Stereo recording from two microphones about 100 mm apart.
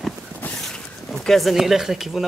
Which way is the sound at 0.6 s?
5° left (ahead or behind).